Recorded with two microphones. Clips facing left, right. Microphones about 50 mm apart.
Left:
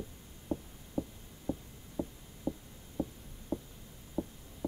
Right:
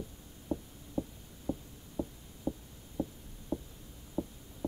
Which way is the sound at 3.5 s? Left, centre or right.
Left.